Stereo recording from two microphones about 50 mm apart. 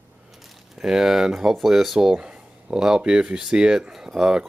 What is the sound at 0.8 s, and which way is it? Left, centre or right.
Speech, centre.